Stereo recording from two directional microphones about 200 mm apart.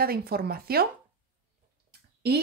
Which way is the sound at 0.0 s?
50° right (ahead or behind).